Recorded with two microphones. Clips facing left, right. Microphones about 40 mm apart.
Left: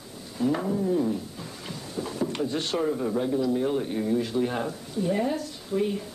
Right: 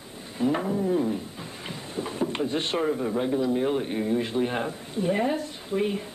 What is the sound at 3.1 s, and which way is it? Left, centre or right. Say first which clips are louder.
A man's voice: even; right.